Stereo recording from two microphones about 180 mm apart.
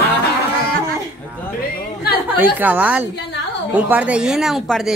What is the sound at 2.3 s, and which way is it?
A woman's voice, 10° right (ahead or behind).